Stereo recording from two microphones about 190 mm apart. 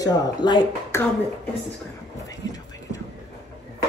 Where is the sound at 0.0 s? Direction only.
20° left (ahead or behind).